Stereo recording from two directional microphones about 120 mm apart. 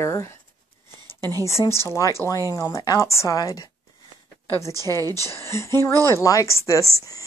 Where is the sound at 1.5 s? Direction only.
25° left (ahead or behind).